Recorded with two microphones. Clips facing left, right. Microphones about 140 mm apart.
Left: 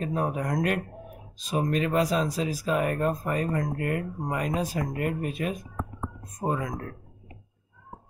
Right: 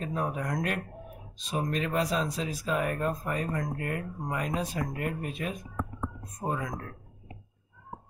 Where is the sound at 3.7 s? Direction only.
60° left (ahead or behind).